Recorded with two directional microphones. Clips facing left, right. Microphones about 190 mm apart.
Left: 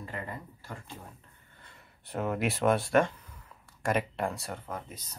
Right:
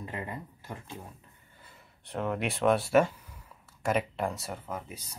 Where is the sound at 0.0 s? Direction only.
20° right (ahead or behind).